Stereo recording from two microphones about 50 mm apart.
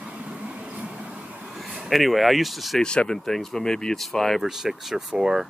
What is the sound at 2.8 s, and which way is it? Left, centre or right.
Speech, centre.